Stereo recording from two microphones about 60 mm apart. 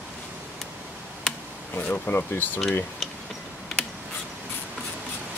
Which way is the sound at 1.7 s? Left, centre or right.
Left.